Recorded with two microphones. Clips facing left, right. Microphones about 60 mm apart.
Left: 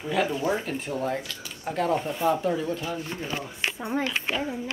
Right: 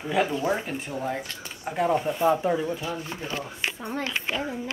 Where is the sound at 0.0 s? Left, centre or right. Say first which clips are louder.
Right 1 dB; centre.